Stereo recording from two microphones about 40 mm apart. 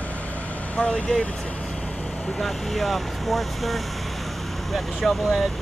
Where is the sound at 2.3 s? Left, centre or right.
Centre.